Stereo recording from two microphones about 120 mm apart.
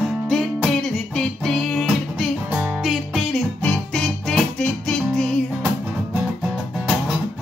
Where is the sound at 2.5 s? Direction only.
20° right (ahead or behind).